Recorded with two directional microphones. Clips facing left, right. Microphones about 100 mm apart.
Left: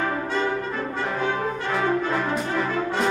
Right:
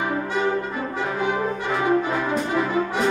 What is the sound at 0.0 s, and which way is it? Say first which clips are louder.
Brass instrument: right 1 dB; 15° right (ahead or behind).